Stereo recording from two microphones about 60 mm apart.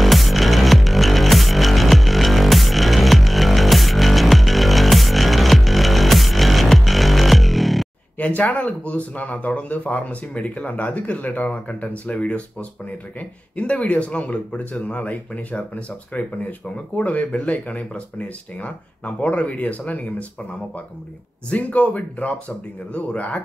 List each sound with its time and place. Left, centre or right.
0.0 s music: centre
8.2 s speech: left
21.5 s speech: left